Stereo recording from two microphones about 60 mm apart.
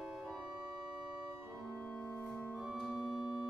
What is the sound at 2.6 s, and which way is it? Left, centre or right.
Organ, centre.